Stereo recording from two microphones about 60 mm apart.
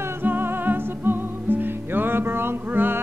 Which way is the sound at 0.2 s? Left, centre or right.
Right.